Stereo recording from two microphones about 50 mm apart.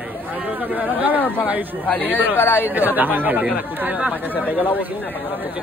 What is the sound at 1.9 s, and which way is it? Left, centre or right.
Speech, left.